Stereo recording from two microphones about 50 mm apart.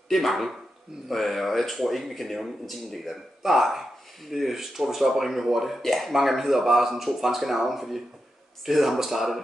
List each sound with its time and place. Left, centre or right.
0.1 s speech: centre